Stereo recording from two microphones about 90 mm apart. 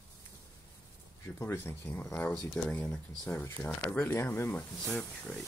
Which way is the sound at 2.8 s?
10° left (ahead or behind).